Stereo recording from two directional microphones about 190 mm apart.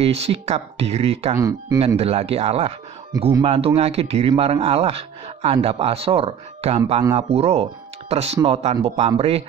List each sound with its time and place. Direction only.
0.0 s speech: 30° right (ahead or behind)
1.3 s speech: 20° right (ahead or behind)
2.0 s speech: 30° right (ahead or behind)